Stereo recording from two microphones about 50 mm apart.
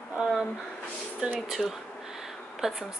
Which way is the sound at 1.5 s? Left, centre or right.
Centre.